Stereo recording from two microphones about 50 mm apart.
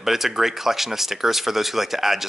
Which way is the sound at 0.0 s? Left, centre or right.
Centre.